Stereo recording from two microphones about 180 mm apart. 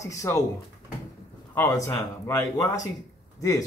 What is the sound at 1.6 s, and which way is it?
Speech, 15° left (ahead or behind).